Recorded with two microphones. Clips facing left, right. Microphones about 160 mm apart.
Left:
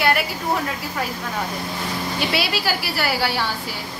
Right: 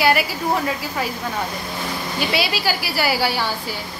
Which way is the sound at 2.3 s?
Centre (ahead or behind).